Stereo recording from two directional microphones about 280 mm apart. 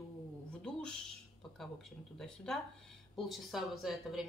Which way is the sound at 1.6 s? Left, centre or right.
Centre.